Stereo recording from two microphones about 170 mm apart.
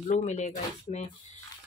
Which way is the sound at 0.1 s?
40° left (ahead or behind).